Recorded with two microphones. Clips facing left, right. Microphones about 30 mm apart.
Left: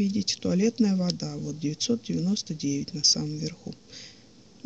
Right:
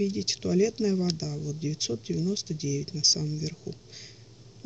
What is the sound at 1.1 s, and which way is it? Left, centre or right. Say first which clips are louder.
Speech: left 1 dB; left.